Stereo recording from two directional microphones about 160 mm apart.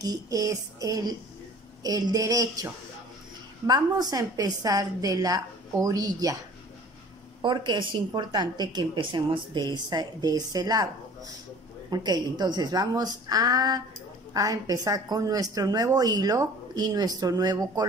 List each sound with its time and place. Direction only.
0.0 s a woman's voice: 20° right (ahead or behind)
7.4 s a woman's voice: 30° right (ahead or behind)
11.9 s a woman's voice: 25° right (ahead or behind)